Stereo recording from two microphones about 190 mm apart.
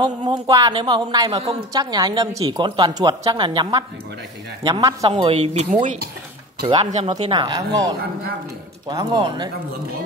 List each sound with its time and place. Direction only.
0.0 s a woman's voice: 20° right (ahead or behind); by 6.0 s 40° right (ahead or behind)
6.6 s a woman's voice: 25° right (ahead or behind)